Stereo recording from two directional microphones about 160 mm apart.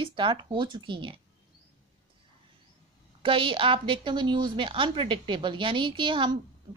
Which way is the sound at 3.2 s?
35° right (ahead or behind).